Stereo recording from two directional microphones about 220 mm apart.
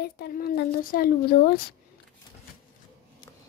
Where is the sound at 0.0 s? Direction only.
45° left (ahead or behind).